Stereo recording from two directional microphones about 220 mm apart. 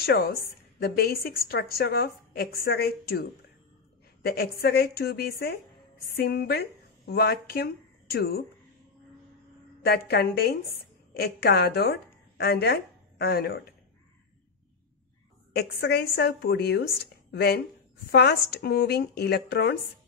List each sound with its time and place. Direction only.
0.0 s a woman's voice: 45° left (ahead or behind)
9.8 s a woman's voice: 45° left (ahead or behind)
15.5 s a woman's voice: 45° left (ahead or behind)